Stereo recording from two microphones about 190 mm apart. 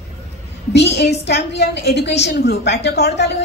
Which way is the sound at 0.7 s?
65° left (ahead or behind).